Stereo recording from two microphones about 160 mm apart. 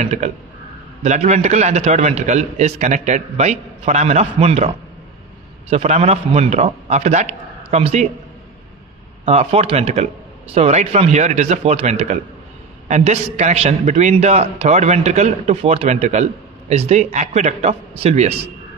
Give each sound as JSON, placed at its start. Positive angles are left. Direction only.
{"t": 0.0, "sound": "a man's voice", "side_deg": -45}
{"t": 9.2, "sound": "a man's voice", "side_deg": -40}